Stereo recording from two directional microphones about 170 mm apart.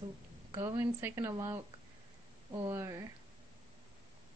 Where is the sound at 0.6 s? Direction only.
15° right (ahead or behind).